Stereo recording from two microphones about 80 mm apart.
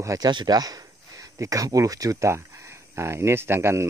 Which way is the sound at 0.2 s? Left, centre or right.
Right.